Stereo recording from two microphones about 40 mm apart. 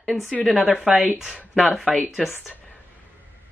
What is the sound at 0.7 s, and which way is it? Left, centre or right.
Speech, centre.